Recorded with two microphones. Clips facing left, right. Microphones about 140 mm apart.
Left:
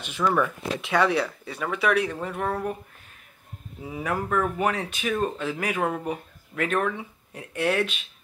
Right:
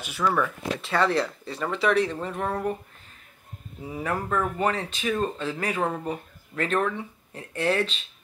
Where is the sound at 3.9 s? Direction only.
5° left (ahead or behind).